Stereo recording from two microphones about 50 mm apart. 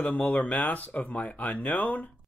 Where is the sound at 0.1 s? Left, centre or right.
Left.